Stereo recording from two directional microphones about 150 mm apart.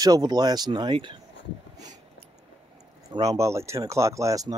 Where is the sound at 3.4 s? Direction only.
20° right (ahead or behind).